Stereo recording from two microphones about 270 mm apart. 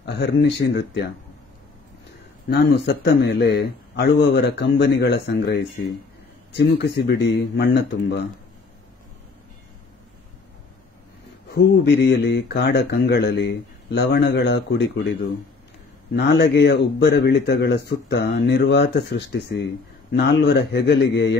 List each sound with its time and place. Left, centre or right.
0.0 s speech: left
2.5 s speech: left
11.5 s speech: left
16.2 s speech: left